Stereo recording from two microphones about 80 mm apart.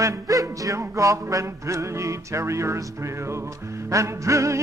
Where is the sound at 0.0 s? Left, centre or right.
Right.